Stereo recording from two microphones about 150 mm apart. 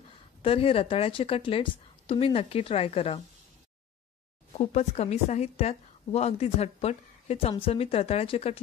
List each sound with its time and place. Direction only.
0.4 s a woman's voice: 40° left (ahead or behind)
4.6 s a woman's voice: 45° left (ahead or behind)